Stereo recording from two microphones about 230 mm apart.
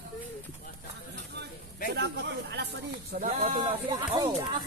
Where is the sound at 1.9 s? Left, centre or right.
Right.